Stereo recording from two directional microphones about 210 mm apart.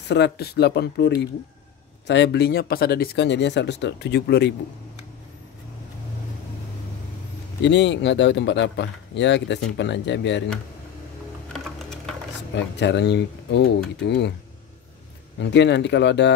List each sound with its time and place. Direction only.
0.1 s speech: 50° left (ahead or behind)
7.6 s speech: 60° left (ahead or behind)
11.5 s typing: centre (ahead or behind)
12.5 s speech: 55° left (ahead or behind)
15.5 s speech: 55° left (ahead or behind)